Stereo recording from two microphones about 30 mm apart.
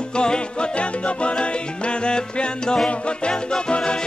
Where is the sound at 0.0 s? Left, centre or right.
Left.